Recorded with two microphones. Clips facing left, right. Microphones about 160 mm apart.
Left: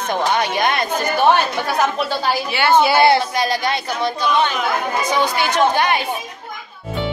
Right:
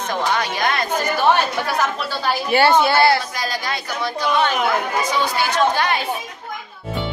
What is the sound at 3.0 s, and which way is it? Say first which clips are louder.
Speech: left 3 dB; 25° left (ahead or behind).